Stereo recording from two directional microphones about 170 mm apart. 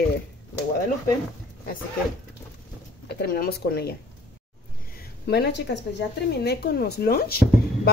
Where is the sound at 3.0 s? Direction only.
70° left (ahead or behind).